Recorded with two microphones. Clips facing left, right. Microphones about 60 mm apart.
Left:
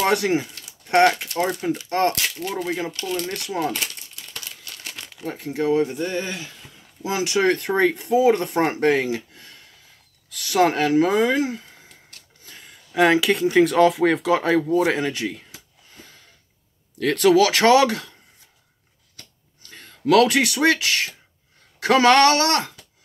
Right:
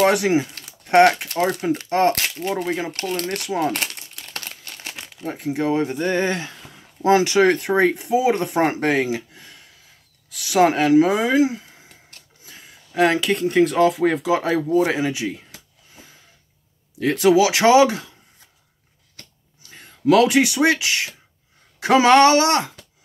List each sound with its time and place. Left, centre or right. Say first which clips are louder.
0.0 s speech: right 3 dB; centre
3.3 s speech: right 3 dB; right
3.7 s crumpling: right 2 dB; right
4.6 s crumpling: right 2 dB; right
5.1 s speech: right 3 dB; centre
6.0 s speech: right 6 dB; right
7.0 s speech: right 9 dB; right
7.3 s speech: right 3 dB; right
12.4 s a sound: even; centre
12.9 s speech: left 1 dB; centre
15.9 s a sound: left 1 dB; centre
17.0 s speech: even; centre
19.7 s speech: right 1 dB; centre